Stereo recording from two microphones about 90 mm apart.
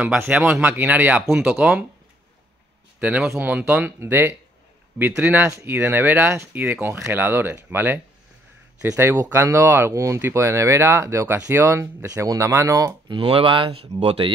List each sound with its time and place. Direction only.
0.5 s speech: 15° right (ahead or behind)
3.0 s speech: 15° right (ahead or behind)
4.0 s speech: 25° right (ahead or behind)
5.5 s speech: 35° right (ahead or behind)
5.8 s speech: 25° right (ahead or behind)
13.1 s speech: 70° right (ahead or behind); by 14.3 s 90° right